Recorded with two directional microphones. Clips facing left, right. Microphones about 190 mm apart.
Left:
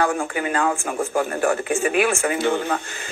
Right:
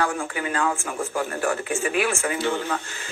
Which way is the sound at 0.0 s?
50° left (ahead or behind).